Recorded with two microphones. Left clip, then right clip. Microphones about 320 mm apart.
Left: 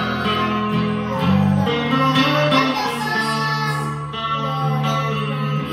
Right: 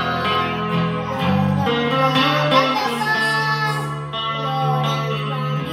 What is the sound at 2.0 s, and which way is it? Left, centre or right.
Music, centre.